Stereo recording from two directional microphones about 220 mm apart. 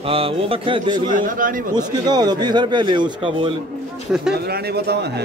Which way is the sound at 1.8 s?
20° right (ahead or behind).